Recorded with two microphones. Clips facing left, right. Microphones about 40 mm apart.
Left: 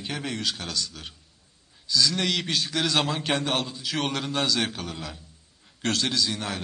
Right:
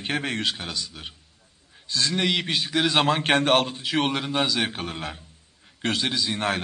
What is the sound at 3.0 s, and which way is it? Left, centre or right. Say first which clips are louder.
Speech: right 6 dB; right.